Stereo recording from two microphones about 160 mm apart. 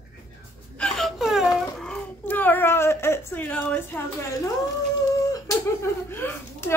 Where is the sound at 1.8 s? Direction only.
10° left (ahead or behind).